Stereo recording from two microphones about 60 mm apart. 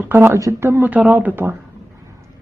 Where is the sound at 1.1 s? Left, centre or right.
Right.